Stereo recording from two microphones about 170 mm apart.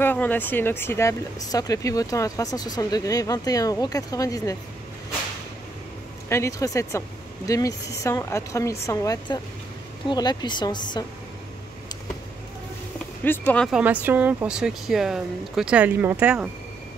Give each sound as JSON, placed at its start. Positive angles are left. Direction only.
{"t": 0.0, "sound": "speech", "side_deg": 10}
{"t": 6.2, "sound": "speech", "side_deg": 15}
{"t": 13.2, "sound": "speech", "side_deg": 10}
{"t": 13.7, "sound": "speech", "side_deg": -5}